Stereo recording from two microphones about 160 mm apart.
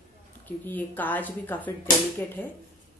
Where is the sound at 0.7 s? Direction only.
10° left (ahead or behind).